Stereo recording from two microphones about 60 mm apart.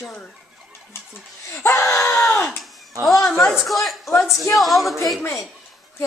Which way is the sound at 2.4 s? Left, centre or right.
Centre.